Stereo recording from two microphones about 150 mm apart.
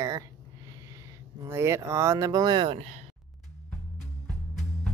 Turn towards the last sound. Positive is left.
turn(degrees=-45)  # may be behind; listen again after turning